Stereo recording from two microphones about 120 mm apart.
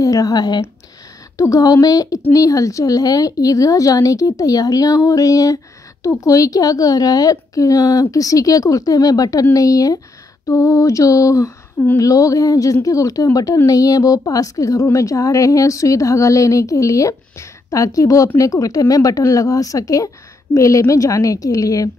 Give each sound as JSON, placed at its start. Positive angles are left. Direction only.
{"t": 0.0, "sound": "speech", "side_deg": 30}